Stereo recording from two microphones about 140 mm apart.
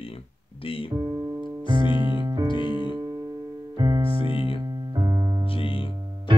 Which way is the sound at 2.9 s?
30° right (ahead or behind).